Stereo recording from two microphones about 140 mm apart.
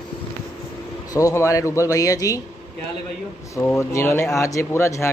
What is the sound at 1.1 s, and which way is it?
Speech, 20° left (ahead or behind).